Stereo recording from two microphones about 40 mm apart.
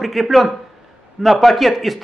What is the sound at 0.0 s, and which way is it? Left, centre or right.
A man's voice, centre.